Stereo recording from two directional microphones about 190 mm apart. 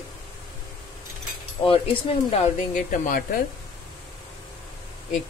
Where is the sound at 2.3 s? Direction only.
40° left (ahead or behind).